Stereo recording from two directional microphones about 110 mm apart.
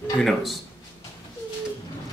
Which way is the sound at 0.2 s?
Centre (ahead or behind).